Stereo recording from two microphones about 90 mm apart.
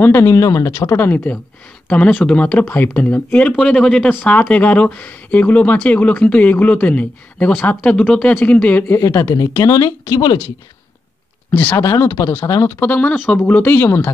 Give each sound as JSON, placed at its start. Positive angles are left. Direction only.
{"t": 0.0, "sound": "speech", "side_deg": 25}
{"t": 1.9, "sound": "speech", "side_deg": 15}
{"t": 4.1, "sound": "speech", "side_deg": 20}
{"t": 9.0, "sound": "speech", "side_deg": 35}
{"t": 10.1, "sound": "speech", "side_deg": 60}
{"t": 11.5, "sound": "speech", "side_deg": 15}
{"t": 11.8, "sound": "speech", "side_deg": 35}
{"t": 12.1, "sound": "speech", "side_deg": 25}